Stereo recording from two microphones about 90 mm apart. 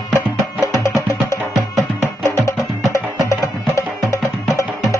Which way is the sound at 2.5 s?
35° left (ahead or behind).